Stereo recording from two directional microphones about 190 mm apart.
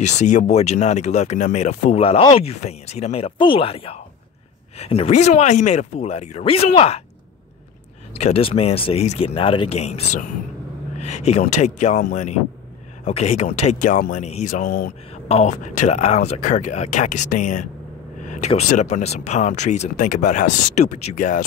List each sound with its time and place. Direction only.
0.0 s speech: 40° left (ahead or behind)
8.1 s speech: 30° left (ahead or behind)